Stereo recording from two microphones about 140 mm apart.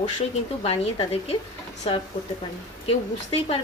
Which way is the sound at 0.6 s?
45° left (ahead or behind).